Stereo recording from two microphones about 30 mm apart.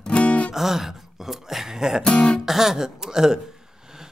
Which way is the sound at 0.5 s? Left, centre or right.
Centre.